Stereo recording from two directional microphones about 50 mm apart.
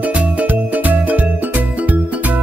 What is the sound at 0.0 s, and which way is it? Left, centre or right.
Music, right.